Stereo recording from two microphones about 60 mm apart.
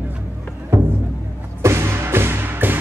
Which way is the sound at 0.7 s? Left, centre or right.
Right.